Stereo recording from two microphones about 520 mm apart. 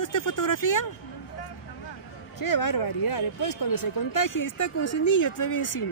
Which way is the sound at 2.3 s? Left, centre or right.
Left.